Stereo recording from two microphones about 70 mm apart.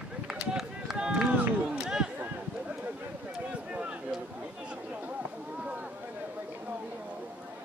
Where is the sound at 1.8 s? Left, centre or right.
Centre.